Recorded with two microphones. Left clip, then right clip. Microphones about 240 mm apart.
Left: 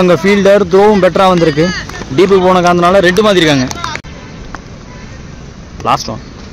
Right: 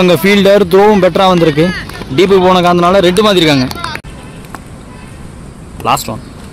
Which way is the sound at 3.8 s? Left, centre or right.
Left.